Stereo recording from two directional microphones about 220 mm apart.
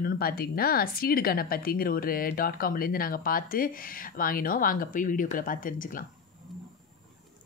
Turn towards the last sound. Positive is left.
turn(degrees=40)  # may be behind; listen again after turning